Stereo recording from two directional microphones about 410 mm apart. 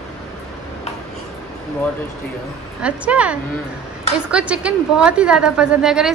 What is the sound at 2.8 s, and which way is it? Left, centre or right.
A woman's voice, centre.